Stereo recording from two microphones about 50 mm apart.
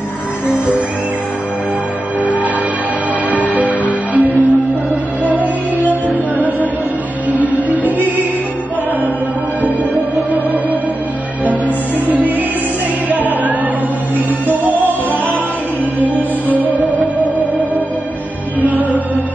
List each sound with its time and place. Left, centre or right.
0.5 s music: right
3.3 s music: right
10.1 s music: right
16.2 s music: right
18.6 s music: right